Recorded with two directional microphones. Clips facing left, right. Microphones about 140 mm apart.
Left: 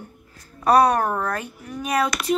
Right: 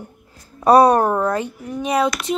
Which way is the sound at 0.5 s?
30° right (ahead or behind).